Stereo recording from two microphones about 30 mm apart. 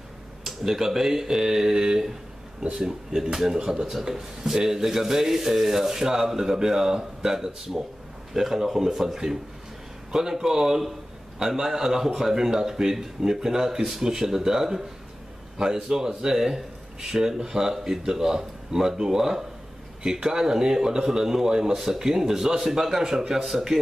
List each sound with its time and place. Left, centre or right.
0.5 s speech: centre